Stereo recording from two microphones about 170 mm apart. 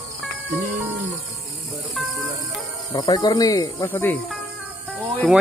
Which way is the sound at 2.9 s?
25° left (ahead or behind).